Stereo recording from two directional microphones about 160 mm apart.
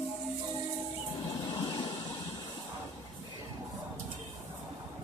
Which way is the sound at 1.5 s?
30° left (ahead or behind).